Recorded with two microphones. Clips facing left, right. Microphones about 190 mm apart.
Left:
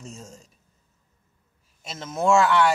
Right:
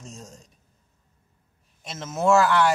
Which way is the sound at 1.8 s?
5° right (ahead or behind).